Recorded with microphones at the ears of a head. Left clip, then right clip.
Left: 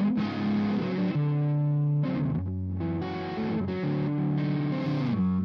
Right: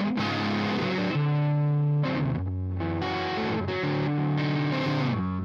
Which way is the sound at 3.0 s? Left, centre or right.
Right.